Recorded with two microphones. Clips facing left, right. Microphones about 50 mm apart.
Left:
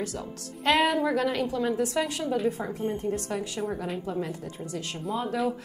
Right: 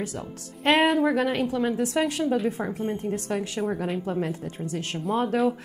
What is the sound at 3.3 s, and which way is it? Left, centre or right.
A woman's voice, right.